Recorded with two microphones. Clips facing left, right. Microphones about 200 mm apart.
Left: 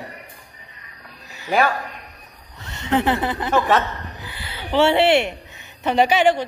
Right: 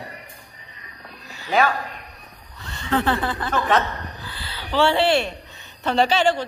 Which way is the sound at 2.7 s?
20° left (ahead or behind).